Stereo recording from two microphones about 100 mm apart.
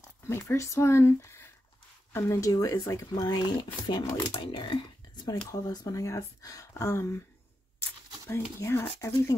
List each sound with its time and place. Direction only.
0.3 s speech: 30° left (ahead or behind)
4.3 s speech: 50° left (ahead or behind)
5.5 s speech: 35° left (ahead or behind)
8.3 s speech: 25° left (ahead or behind)